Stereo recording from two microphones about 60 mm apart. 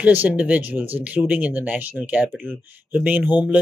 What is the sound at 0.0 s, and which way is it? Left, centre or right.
Speech, right.